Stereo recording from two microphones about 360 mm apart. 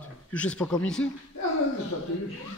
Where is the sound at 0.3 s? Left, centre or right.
Centre.